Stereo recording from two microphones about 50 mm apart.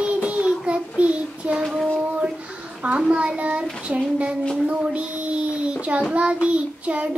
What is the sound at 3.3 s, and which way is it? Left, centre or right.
Child singing, right.